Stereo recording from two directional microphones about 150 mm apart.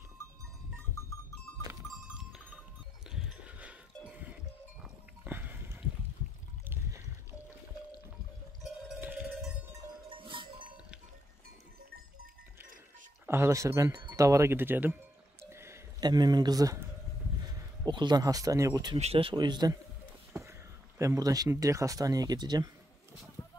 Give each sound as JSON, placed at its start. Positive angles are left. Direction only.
{"t": 2.1, "sound": "cowbell", "side_deg": -5}
{"t": 3.1, "sound": "livestock", "side_deg": -5}
{"t": 4.8, "sound": "pig", "side_deg": -10}
{"t": 9.0, "sound": "cowbell", "side_deg": -10}
{"t": 10.0, "sound": "goat", "side_deg": -35}
{"t": 13.3, "sound": "speech", "side_deg": -20}
{"t": 15.5, "sound": "a sound", "side_deg": -15}
{"t": 16.1, "sound": "speech", "side_deg": -30}
{"t": 17.8, "sound": "speech", "side_deg": -30}
{"t": 18.9, "sound": "speech", "side_deg": -40}
{"t": 20.3, "sound": "a sound", "side_deg": -20}
{"t": 21.0, "sound": "speech", "side_deg": -20}
{"t": 23.4, "sound": "clip-clop", "side_deg": 15}